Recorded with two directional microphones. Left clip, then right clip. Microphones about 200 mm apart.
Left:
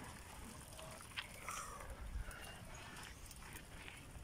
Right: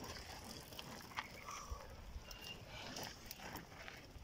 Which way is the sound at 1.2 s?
35° right (ahead or behind).